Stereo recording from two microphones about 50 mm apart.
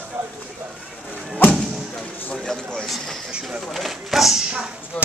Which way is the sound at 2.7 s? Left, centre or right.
Centre.